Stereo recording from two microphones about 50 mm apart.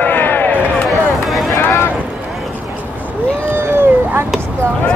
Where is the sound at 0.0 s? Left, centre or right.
Left.